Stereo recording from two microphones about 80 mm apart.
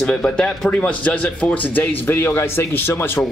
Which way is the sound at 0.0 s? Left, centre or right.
Centre.